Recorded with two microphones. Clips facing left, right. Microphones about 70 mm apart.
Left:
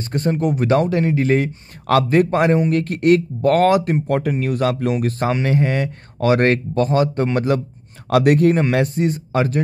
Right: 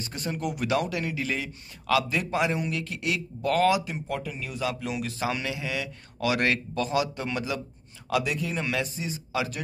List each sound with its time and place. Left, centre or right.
0.0 s a man's voice: left